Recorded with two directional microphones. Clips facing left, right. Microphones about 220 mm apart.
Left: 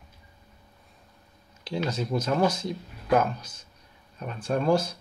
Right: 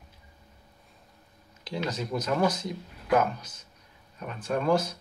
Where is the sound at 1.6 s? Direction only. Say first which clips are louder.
Left 3 dB; 30° left (ahead or behind).